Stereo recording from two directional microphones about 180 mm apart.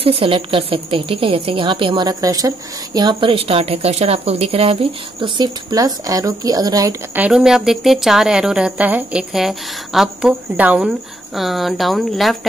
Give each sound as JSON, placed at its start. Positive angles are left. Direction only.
{"t": 0.0, "sound": "a woman's voice", "side_deg": -30}
{"t": 7.2, "sound": "a woman's voice", "side_deg": -5}